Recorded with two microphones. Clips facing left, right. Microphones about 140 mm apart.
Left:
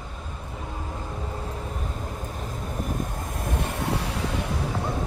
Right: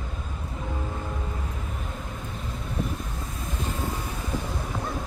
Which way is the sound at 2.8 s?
50° left (ahead or behind).